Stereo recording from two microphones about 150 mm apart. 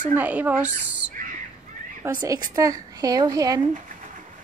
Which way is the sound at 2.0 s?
20° right (ahead or behind).